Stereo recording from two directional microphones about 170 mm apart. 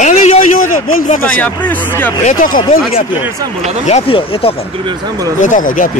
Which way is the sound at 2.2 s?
55° left (ahead or behind).